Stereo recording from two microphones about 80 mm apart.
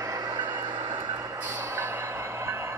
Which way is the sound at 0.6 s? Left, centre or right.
Right.